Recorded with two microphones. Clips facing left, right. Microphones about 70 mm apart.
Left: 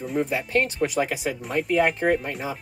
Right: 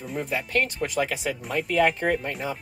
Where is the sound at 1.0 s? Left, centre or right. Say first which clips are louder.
Right 2 dB; left.